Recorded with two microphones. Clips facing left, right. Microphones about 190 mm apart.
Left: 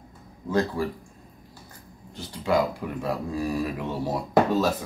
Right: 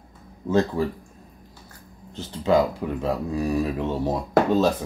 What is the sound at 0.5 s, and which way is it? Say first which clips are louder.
Speech: right 3 dB; 25° right (ahead or behind).